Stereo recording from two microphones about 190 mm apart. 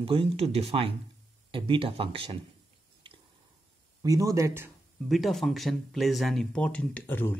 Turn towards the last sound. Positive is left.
turn(degrees=10)  # may be behind; listen again after turning